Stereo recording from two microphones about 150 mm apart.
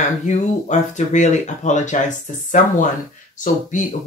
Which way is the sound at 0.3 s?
55° left (ahead or behind).